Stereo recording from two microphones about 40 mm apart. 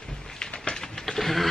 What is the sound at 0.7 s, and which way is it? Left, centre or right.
Printer, centre.